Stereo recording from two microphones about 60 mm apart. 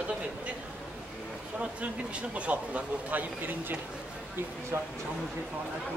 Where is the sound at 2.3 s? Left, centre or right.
Right.